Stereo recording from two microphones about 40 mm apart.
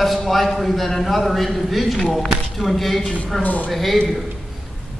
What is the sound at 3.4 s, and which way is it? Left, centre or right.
Speech, left.